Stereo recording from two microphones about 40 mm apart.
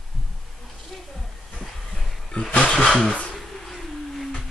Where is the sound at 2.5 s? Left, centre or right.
Left.